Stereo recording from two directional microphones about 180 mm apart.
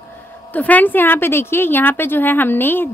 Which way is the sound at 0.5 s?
10° left (ahead or behind).